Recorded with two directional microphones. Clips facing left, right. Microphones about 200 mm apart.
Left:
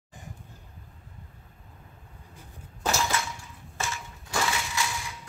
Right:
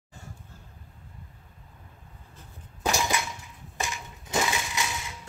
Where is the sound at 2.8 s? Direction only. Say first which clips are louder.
Right 1 dB; 15° right (ahead or behind).